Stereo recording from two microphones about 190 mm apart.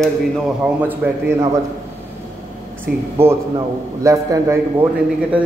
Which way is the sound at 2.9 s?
50° right (ahead or behind).